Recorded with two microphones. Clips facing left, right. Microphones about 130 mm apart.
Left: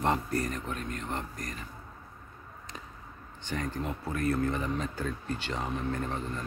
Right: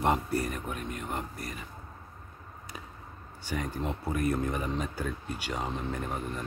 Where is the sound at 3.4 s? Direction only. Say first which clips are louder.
Even; 10° right (ahead or behind).